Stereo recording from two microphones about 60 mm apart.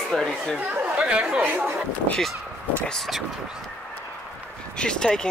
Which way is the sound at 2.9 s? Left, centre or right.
Centre.